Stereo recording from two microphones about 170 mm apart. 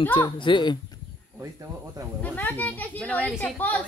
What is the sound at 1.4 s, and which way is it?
Speech, 20° right (ahead or behind).